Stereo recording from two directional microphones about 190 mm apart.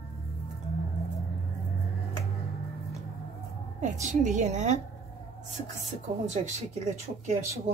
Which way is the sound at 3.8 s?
40° right (ahead or behind).